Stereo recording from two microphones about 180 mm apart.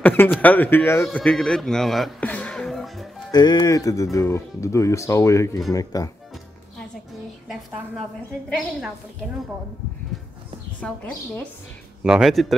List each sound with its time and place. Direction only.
0.0 s a man's voice: 10° left (ahead or behind)
3.3 s speech: 20° left (ahead or behind)
8.5 s speech: 5° left (ahead or behind)
10.8 s speech: 10° left (ahead or behind)
12.0 s speech: 5° right (ahead or behind)